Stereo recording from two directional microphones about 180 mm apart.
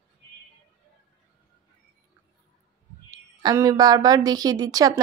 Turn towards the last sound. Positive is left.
turn(degrees=-20)  # may be behind; listen again after turning